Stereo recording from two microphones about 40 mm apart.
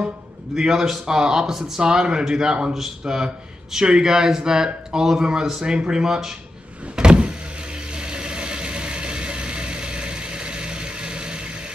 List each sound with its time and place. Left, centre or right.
0.6 s speech: centre
2.7 s speech: centre
3.7 s speech: centre
7.0 s power windows: right
8.0 s vehicle: right